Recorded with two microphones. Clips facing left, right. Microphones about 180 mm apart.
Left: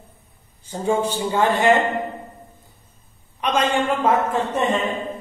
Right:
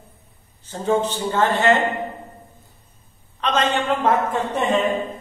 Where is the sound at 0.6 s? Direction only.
10° left (ahead or behind).